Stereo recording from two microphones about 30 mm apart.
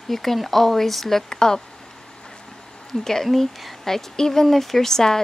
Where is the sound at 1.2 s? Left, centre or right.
Left.